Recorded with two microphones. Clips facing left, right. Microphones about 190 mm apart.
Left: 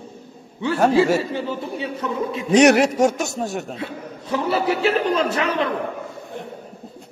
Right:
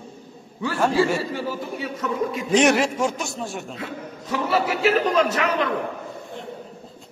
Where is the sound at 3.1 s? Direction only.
45° left (ahead or behind).